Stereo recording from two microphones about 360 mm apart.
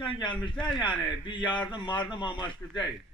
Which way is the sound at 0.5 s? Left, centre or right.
Centre.